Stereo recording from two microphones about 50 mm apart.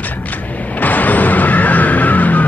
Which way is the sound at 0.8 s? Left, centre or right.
Left.